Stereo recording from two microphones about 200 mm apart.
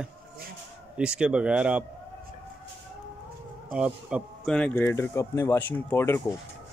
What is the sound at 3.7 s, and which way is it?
Speech, 5° right (ahead or behind).